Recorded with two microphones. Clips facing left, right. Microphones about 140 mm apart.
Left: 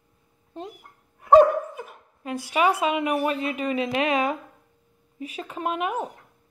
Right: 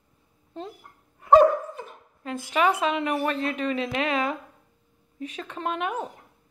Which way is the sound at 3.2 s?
10° left (ahead or behind).